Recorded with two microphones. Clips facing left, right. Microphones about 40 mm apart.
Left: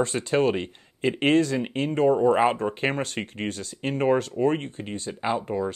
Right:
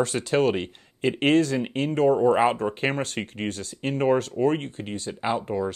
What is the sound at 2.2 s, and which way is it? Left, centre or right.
Speech, centre.